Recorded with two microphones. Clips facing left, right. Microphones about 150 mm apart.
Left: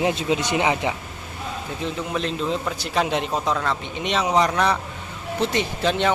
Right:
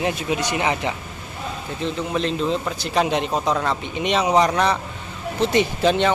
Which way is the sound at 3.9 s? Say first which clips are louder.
Right 3 dB; centre (ahead or behind).